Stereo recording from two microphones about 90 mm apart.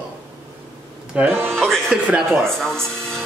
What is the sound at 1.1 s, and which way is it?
Speech, 25° right (ahead or behind).